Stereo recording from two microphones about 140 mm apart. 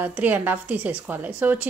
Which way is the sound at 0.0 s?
15° right (ahead or behind).